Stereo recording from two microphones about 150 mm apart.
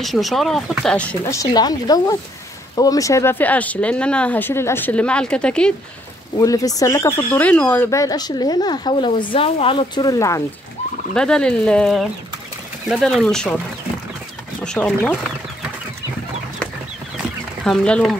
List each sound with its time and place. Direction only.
0.0 s speech: centre (ahead or behind)
1.2 s speech: 20° left (ahead or behind)
6.3 s speech: 25° left (ahead or behind)
11.1 s speech: 5° left (ahead or behind)
14.6 s speech: 5° left (ahead or behind)
17.6 s speech: 5° left (ahead or behind)